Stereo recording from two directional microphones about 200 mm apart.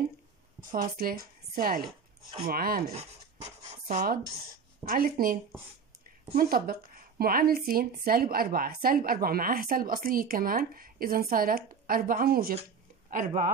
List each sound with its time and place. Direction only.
0.7 s speech: 45° right (ahead or behind)